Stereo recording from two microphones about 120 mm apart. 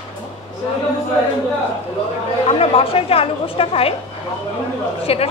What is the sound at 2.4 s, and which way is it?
A woman's voice, 55° left (ahead or behind).